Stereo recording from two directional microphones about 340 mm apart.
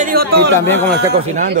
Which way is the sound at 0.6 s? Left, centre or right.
Centre.